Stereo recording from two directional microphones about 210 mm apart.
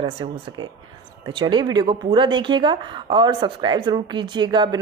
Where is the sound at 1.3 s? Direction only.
20° right (ahead or behind).